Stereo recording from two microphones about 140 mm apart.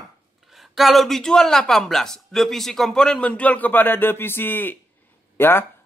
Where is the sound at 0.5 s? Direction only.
Centre (ahead or behind).